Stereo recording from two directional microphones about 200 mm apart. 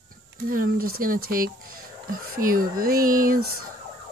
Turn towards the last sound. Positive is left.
turn(degrees=-45)  # may be behind; listen again after turning